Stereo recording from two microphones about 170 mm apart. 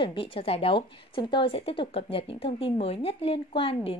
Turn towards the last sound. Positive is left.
turn(degrees=35)  # may be behind; listen again after turning